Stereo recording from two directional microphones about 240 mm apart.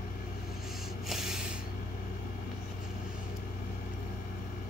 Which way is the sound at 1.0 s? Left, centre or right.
Centre.